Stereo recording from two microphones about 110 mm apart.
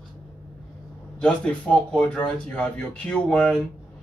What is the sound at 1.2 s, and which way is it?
Speech, 10° left (ahead or behind).